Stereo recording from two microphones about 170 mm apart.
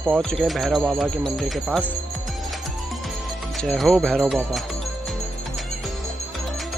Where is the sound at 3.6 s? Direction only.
Centre (ahead or behind).